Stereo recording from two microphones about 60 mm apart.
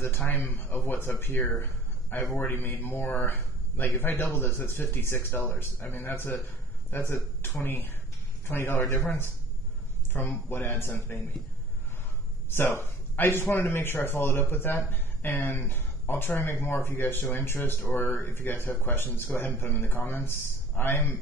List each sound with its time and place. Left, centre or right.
0.3 s speech: left
12.4 s speech: left